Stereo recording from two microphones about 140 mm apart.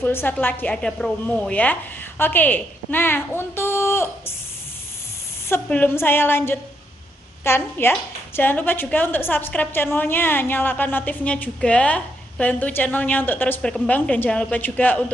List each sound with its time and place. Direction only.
0.0 s a woman's voice: 15° left (ahead or behind)
5.5 s a woman's voice: 15° left (ahead or behind)